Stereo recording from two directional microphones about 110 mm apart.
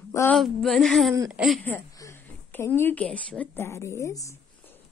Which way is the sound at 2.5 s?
20° left (ahead or behind).